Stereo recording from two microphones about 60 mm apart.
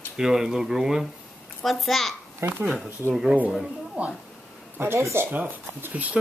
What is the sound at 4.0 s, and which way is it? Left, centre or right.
Speech, right.